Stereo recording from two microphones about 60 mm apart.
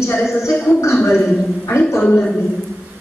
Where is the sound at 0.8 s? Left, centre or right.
Left.